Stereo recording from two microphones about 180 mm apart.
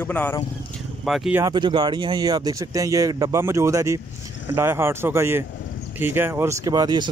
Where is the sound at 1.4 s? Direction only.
25° right (ahead or behind).